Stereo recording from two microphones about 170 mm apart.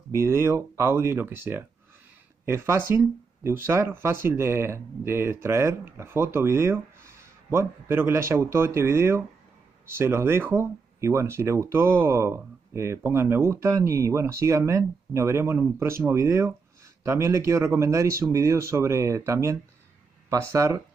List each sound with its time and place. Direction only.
0.1 s speech: 15° right (ahead or behind)